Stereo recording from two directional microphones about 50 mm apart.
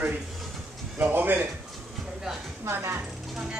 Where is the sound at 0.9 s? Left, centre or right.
Right.